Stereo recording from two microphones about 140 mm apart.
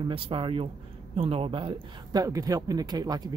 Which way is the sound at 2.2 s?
25° right (ahead or behind).